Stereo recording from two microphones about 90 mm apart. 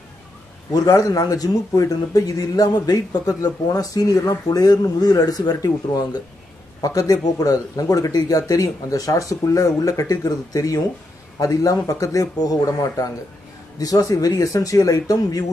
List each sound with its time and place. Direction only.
0.8 s speech: 40° left (ahead or behind)